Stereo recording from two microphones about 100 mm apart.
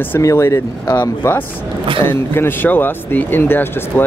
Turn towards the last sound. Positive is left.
turn(degrees=20)  # may be behind; listen again after turning